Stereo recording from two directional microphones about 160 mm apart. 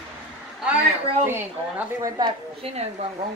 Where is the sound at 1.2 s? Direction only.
15° right (ahead or behind).